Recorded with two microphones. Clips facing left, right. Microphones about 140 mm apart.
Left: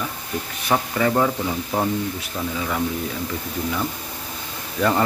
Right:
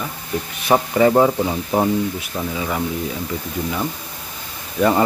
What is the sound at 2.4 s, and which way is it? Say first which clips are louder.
Speech: right 1 dB; 10° right (ahead or behind).